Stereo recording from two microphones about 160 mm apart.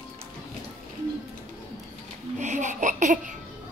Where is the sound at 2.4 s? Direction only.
50° right (ahead or behind).